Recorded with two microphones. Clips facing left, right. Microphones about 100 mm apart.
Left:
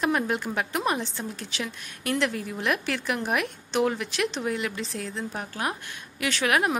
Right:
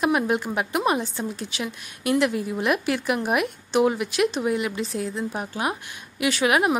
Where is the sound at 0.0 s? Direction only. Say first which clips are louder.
Right 4 dB; 15° right (ahead or behind).